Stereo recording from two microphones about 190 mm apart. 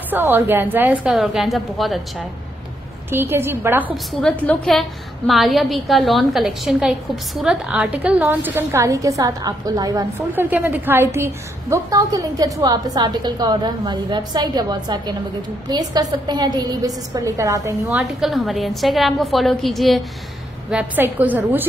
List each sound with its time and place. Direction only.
0.1 s a woman's voice: 10° right (ahead or behind)
3.1 s a woman's voice: 10° right (ahead or behind)
4.2 s a woman's voice: 5° left (ahead or behind); by 17.9 s 15° right (ahead or behind)
17.9 s a woman's voice: centre (ahead or behind)